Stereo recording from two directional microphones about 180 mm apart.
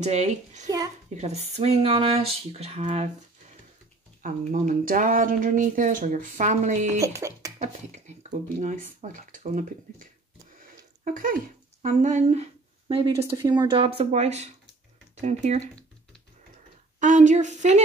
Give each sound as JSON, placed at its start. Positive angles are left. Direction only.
{"t": 0.0, "sound": "speech", "side_deg": -40}
{"t": 4.2, "sound": "speech", "side_deg": -45}
{"t": 7.0, "sound": "speech", "side_deg": -15}
{"t": 7.5, "sound": "speech", "side_deg": -40}
{"t": 11.1, "sound": "speech", "side_deg": -50}
{"t": 13.2, "sound": "speech", "side_deg": -20}
{"t": 17.0, "sound": "speech", "side_deg": -45}